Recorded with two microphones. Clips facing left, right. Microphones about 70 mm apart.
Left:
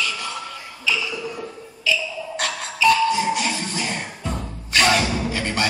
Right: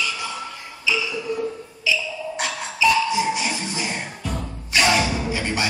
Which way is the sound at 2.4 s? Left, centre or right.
Centre.